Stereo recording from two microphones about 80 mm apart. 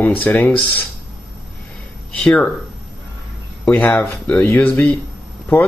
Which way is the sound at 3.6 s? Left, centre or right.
Centre.